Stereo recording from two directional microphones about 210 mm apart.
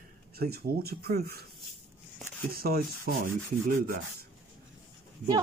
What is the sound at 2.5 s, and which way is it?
Speech, 45° right (ahead or behind).